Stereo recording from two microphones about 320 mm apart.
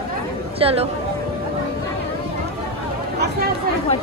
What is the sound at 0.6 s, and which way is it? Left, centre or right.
Speech, centre.